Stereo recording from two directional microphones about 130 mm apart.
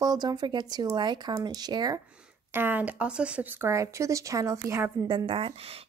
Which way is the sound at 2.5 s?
15° right (ahead or behind).